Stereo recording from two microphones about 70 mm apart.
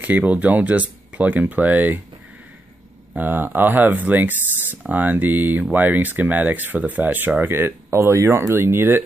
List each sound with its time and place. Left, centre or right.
0.0 s speech: right
3.2 s speech: right